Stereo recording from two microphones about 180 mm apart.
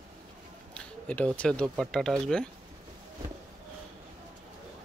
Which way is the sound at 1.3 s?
5° left (ahead or behind).